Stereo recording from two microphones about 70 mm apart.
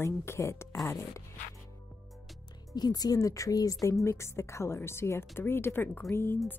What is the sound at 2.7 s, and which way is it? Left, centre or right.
Speech, left.